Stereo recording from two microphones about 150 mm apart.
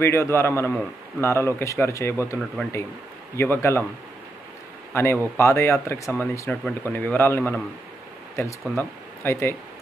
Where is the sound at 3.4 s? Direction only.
15° left (ahead or behind).